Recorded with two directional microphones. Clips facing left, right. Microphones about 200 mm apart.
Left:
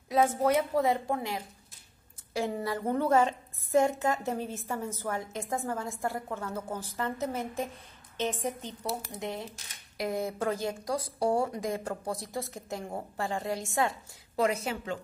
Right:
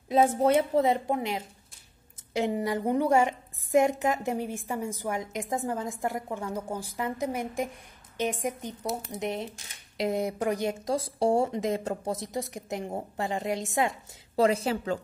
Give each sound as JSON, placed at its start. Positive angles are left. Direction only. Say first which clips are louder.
{"t": 0.1, "sound": "a woman's voice", "louder": "right 3 dB", "side_deg": -25}
{"t": 14.3, "sound": "a woman's voice", "louder": "right 5 dB", "side_deg": -30}